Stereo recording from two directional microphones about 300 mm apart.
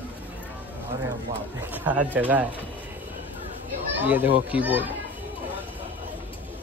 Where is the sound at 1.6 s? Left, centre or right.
Centre.